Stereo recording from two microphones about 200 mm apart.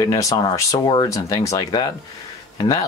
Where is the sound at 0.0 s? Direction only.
15° left (ahead or behind).